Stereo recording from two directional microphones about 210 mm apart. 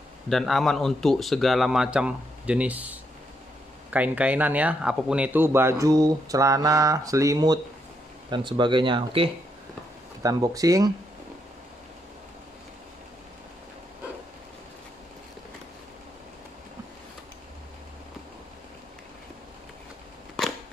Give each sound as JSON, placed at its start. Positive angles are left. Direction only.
{"t": 0.3, "sound": "speech", "side_deg": 0}